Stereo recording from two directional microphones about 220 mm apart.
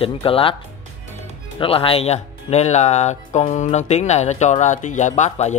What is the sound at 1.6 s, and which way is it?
Speech, 25° left (ahead or behind).